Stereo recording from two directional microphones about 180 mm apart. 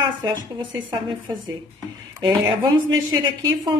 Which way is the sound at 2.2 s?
25° right (ahead or behind).